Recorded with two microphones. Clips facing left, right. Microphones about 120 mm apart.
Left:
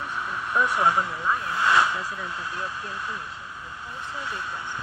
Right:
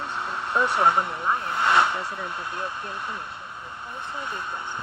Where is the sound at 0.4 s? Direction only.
70° right (ahead or behind).